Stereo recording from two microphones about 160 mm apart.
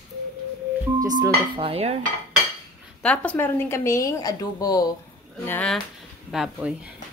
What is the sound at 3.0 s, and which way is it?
Speech, 10° left (ahead or behind).